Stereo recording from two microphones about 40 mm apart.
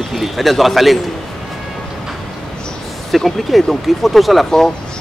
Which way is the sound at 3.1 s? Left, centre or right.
Centre.